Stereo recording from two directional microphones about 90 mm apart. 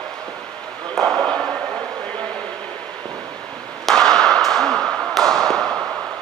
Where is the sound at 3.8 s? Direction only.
5° left (ahead or behind).